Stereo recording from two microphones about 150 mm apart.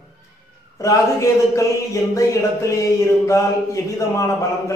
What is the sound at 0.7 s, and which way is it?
A man's voice, 20° left (ahead or behind).